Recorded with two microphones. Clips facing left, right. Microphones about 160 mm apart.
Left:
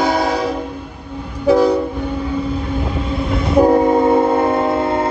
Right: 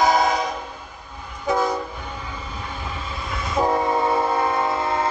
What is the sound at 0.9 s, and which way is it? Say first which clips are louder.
Train: left 10 dB; 60° left (ahead or behind).